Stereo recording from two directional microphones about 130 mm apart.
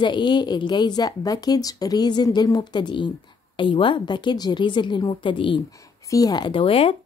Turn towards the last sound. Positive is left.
turn(degrees=45)  # may be behind; listen again after turning